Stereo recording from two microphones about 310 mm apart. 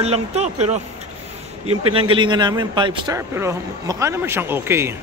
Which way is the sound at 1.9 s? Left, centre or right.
Centre.